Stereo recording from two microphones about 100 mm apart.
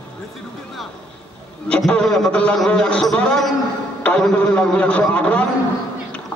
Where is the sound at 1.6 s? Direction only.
10° left (ahead or behind).